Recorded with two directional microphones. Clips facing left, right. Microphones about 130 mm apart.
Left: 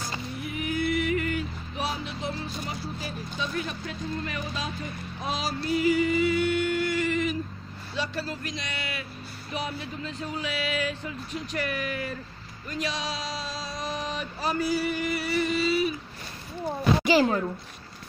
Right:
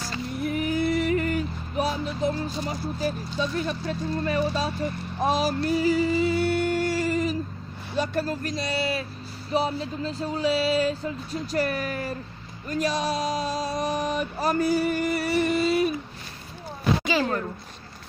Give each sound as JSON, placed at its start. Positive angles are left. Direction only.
{"t": 0.4, "sound": "music", "side_deg": -45}
{"t": 3.3, "sound": "speech", "side_deg": -40}
{"t": 5.8, "sound": "music", "side_deg": -35}
{"t": 7.9, "sound": "speech", "side_deg": -50}
{"t": 12.6, "sound": "a sound", "side_deg": -45}
{"t": 17.2, "sound": "a woman's voice", "side_deg": 10}